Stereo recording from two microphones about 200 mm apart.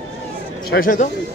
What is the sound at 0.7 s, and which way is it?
Speech, 45° left (ahead or behind).